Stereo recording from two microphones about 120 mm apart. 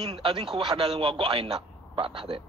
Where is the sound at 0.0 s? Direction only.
55° right (ahead or behind).